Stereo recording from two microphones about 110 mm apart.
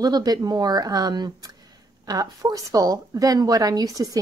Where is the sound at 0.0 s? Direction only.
35° right (ahead or behind).